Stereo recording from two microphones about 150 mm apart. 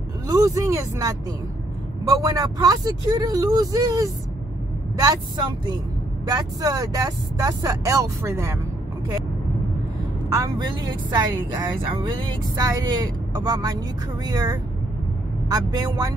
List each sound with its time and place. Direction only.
0.3 s a woman's voice: 20° right (ahead or behind)
6.2 s a woman's voice: 25° right (ahead or behind)
10.3 s a woman's voice: 25° right (ahead or behind)